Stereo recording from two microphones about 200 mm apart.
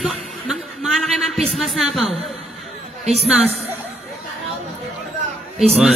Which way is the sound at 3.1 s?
30° right (ahead or behind).